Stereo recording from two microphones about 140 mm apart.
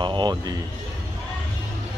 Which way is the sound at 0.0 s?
30° right (ahead or behind).